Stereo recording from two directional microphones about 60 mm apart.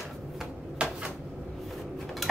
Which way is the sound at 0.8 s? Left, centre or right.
Centre.